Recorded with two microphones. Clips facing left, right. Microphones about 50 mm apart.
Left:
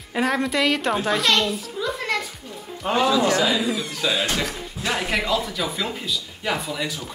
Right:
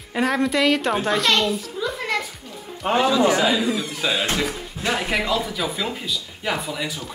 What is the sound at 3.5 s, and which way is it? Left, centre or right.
Speech, centre.